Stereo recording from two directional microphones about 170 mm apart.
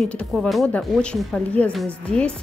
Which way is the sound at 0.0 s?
5° left (ahead or behind).